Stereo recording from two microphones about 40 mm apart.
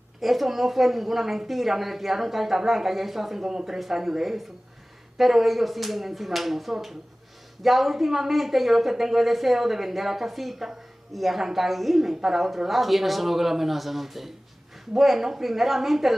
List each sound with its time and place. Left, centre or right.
0.2 s speech: centre